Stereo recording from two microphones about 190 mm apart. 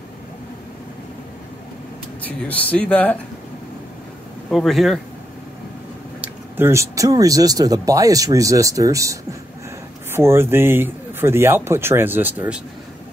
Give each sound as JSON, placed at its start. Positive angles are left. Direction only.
{"t": 2.2, "sound": "speech", "side_deg": 10}
{"t": 4.5, "sound": "speech", "side_deg": 0}
{"t": 6.2, "sound": "speech", "side_deg": -10}